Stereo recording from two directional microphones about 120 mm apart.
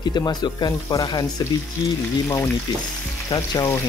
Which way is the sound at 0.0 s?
35° left (ahead or behind).